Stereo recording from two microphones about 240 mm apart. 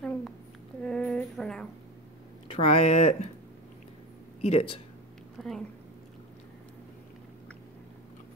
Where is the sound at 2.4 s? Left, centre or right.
Left.